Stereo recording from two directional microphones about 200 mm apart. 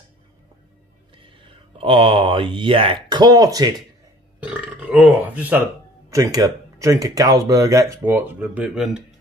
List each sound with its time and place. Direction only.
1.1 s speech: 25° right (ahead or behind)
4.5 s speech: 5° right (ahead or behind)